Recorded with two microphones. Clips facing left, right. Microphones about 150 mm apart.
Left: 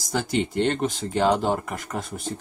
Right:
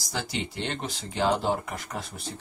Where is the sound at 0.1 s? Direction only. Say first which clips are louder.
Left 8 dB; 50° left (ahead or behind).